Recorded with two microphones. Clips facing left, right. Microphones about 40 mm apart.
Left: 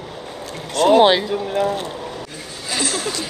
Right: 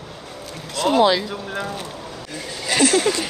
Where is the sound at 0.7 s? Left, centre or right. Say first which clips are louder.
Left 4 dB; left.